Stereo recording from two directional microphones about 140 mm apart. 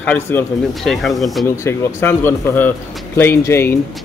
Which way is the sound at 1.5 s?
15° left (ahead or behind).